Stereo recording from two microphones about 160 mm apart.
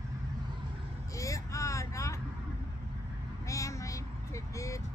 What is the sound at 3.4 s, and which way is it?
Sheep, 20° left (ahead or behind).